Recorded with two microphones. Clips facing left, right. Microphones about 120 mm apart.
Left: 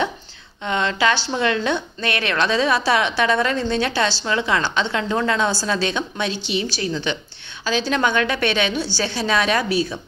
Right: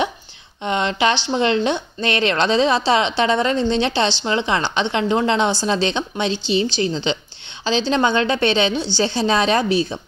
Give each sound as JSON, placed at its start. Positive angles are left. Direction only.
{"t": 0.7, "sound": "a woman's voice", "side_deg": -20}